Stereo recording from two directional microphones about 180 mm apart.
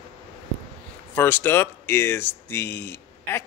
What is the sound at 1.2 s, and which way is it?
Speech, 10° left (ahead or behind).